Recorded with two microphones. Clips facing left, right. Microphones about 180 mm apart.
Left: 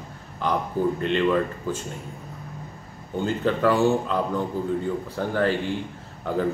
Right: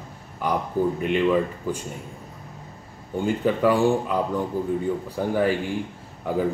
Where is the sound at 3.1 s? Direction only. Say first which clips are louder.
Right 1 dB; 10° right (ahead or behind).